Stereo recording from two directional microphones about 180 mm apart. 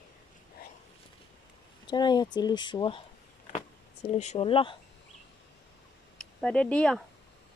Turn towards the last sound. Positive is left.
turn(degrees=5)  # may be behind; listen again after turning